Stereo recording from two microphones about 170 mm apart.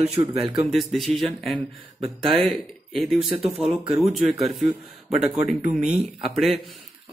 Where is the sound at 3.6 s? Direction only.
35° right (ahead or behind).